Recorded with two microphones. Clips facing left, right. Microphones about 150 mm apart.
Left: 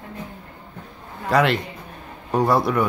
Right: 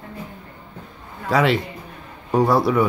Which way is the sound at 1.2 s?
Centre (ahead or behind).